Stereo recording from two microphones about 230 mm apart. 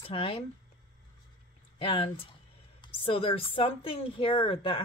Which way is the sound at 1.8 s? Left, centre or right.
Left.